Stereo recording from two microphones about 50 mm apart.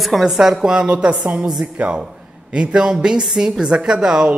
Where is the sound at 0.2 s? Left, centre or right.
Centre.